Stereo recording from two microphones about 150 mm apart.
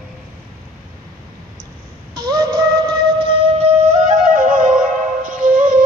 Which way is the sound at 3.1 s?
35° right (ahead or behind).